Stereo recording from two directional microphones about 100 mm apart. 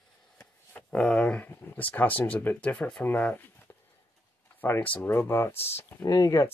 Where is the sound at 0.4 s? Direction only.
10° left (ahead or behind).